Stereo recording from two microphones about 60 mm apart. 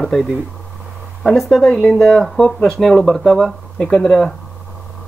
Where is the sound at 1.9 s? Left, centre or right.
Centre.